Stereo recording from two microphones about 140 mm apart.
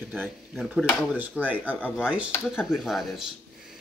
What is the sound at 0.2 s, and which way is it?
Speech, centre (ahead or behind).